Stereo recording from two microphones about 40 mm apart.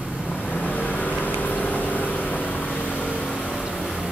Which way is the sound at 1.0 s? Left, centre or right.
Left.